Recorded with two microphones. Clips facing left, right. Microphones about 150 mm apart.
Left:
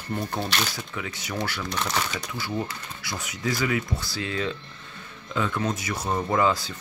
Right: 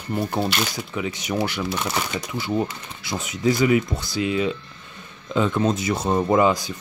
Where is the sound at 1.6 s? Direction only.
5° right (ahead or behind).